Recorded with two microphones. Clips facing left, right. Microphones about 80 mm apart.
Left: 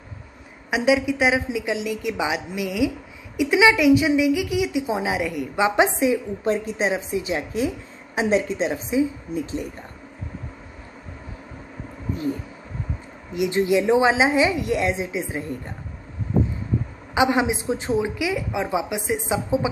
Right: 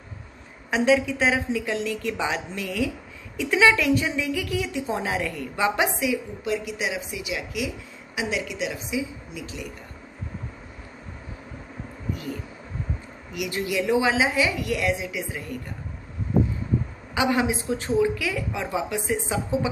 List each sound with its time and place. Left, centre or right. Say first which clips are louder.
0.7 s a woman's voice: left 1 dB; centre; by 9.7 s left
13.3 s a woman's voice: left 8 dB; left
17.1 s a woman's voice: left 3 dB; left